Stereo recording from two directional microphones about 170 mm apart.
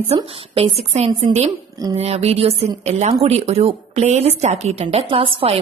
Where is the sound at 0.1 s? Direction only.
35° right (ahead or behind).